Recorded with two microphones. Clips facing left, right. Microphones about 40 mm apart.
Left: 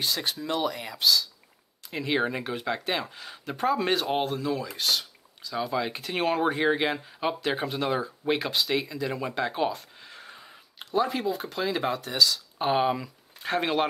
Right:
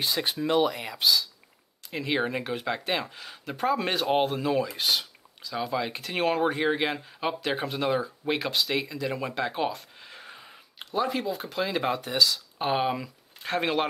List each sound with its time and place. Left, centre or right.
0.0 s speech: centre
4.2 s speech: centre